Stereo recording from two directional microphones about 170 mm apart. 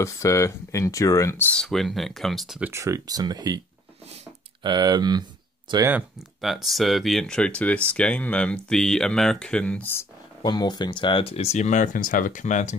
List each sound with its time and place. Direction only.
0.0 s speech: 15° left (ahead or behind); by 2.7 s centre (ahead or behind)
2.7 s speech: 20° right (ahead or behind)
4.6 s speech: 25° right (ahead or behind)
5.9 s speech: 5° right (ahead or behind); by 10.0 s 10° left (ahead or behind)
10.4 s speech: 25° left (ahead or behind); by 12.7 s 45° left (ahead or behind)